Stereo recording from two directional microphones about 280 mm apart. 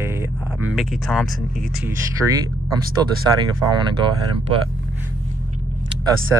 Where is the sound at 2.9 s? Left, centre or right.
Centre.